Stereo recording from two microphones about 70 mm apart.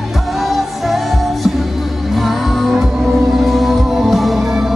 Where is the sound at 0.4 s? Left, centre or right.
Centre.